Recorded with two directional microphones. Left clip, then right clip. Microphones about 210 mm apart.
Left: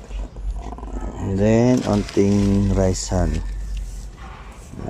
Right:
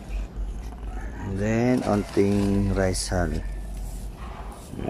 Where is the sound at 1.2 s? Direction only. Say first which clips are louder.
Left 8 dB; 20° left (ahead or behind).